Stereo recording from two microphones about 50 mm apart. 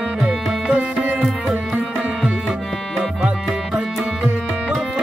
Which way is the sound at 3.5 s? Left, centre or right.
Centre.